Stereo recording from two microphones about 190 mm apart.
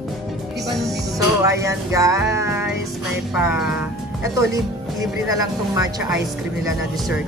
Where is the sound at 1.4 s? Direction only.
15° right (ahead or behind).